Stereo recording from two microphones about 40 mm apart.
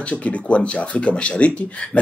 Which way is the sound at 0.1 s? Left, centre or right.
Left.